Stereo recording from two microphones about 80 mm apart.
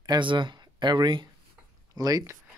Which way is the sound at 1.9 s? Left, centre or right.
Right.